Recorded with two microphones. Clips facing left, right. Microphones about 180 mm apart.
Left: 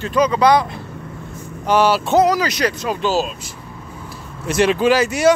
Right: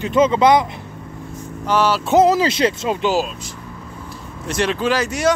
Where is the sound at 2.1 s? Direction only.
25° right (ahead or behind).